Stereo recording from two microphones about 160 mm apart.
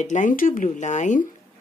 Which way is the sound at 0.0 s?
50° left (ahead or behind).